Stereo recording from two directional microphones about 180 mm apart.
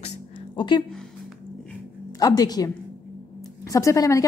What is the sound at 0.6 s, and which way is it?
Speech, 25° left (ahead or behind).